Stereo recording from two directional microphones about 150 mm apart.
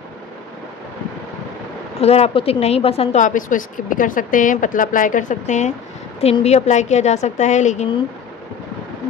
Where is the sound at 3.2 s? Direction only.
60° left (ahead or behind).